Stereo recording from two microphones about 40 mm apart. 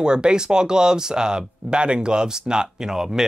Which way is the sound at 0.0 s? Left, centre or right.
Right.